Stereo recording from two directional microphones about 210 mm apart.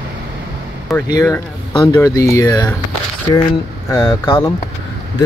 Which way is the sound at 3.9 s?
15° left (ahead or behind).